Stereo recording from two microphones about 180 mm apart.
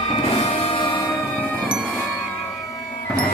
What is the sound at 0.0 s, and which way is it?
Music, 30° left (ahead or behind).